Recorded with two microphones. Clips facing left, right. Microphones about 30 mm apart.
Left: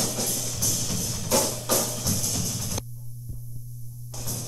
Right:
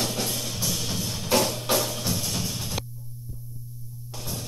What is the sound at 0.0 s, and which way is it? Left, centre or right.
Music, right.